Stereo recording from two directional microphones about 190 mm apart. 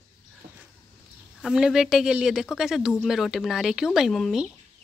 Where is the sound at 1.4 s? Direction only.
Centre (ahead or behind).